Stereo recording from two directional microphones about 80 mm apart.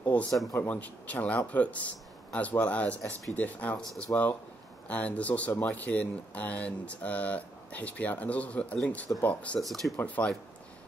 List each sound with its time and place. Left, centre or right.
0.0 s a sound: centre
0.6 s speech: centre
9.6 s speech: centre
9.9 s speech: centre